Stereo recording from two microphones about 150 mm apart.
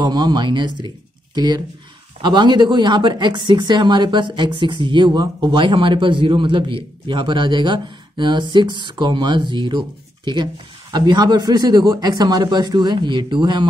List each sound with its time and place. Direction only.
0.0 s speech: 30° right (ahead or behind)